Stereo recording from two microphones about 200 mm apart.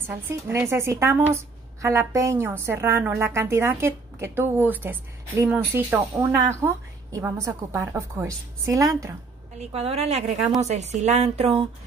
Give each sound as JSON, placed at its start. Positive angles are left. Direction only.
{"t": 0.0, "sound": "a woman's voice", "side_deg": -10}
{"t": 9.6, "sound": "a woman's voice", "side_deg": -30}